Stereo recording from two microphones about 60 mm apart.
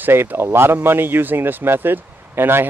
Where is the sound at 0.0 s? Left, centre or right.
Right.